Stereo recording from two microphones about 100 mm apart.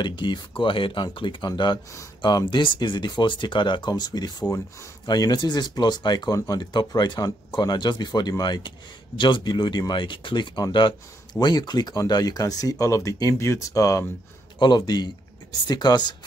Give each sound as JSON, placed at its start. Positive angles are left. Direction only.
{"t": 0.0, "sound": "speech", "side_deg": 50}
{"t": 14.6, "sound": "speech", "side_deg": 45}